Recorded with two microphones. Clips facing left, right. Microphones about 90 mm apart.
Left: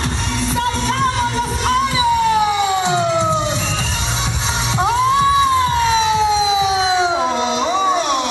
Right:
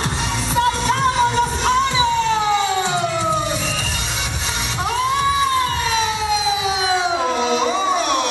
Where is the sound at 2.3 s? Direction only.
15° left (ahead or behind).